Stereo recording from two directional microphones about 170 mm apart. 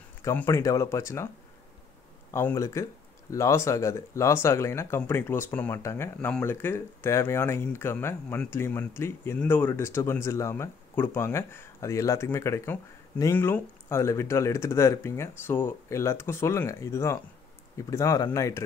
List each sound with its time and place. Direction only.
0.2 s speech: 15° left (ahead or behind)
2.3 s speech: 15° left (ahead or behind)